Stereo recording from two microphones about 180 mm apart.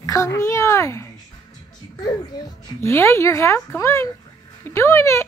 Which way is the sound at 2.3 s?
20° left (ahead or behind).